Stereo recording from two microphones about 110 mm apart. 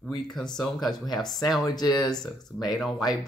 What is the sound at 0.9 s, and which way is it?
Speech, 40° left (ahead or behind).